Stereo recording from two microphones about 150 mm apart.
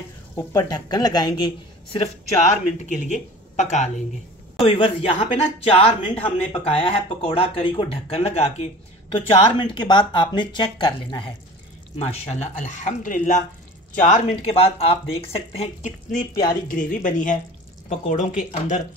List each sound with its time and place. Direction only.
0.4 s a woman's voice: 25° left (ahead or behind)
2.4 s speech: 50° left (ahead or behind)
4.6 s speech: 35° left (ahead or behind)
12.0 s speech: 45° left (ahead or behind)
16.6 s speech: 65° left (ahead or behind)